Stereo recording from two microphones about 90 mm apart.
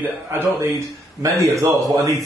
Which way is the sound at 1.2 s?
35° right (ahead or behind).